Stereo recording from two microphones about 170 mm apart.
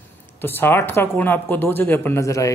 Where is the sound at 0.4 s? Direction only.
10° left (ahead or behind).